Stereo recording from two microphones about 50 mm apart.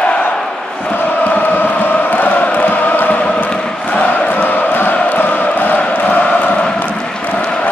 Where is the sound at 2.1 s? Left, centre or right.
Left.